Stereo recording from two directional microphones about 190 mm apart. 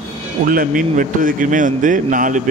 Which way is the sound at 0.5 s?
50° right (ahead or behind).